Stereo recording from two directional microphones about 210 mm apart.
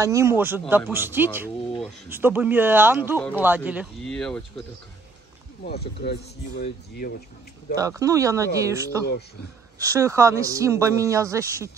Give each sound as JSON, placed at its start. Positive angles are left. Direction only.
{"t": 0.0, "sound": "a man's voice", "side_deg": -15}
{"t": 5.6, "sound": "speech", "side_deg": 50}
{"t": 7.7, "sound": "a man's voice", "side_deg": -15}